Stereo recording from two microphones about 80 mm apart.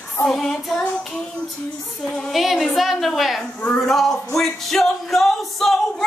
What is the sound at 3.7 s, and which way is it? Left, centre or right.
Music, centre.